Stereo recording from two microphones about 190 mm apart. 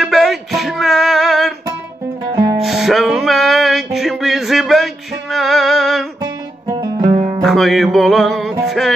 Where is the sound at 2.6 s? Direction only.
Centre (ahead or behind).